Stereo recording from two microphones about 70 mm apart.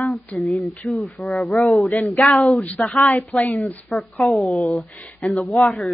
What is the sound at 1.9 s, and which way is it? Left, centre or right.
Speech, left.